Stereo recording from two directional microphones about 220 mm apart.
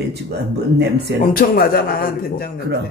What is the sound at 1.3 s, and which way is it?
A man's voice, 40° left (ahead or behind).